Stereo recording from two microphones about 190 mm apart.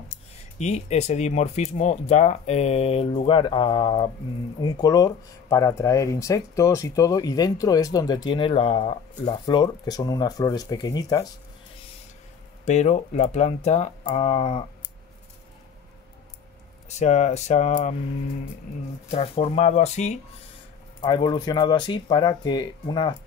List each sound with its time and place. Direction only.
0.6 s speech: 35° left (ahead or behind)
9.3 s speech: 25° left (ahead or behind)
12.6 s speech: 40° left (ahead or behind)
17.0 s speech: 35° left (ahead or behind)
19.0 s speech: 30° left (ahead or behind)
21.0 s speech: 25° left (ahead or behind)